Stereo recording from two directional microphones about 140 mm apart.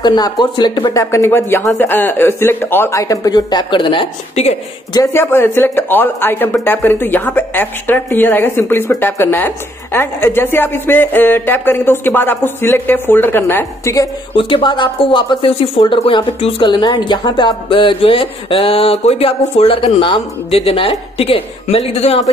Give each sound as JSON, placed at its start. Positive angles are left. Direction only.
{"t": 0.0, "sound": "speech", "side_deg": 30}
{"t": 4.9, "sound": "speech", "side_deg": 20}
{"t": 14.3, "sound": "speech", "side_deg": 35}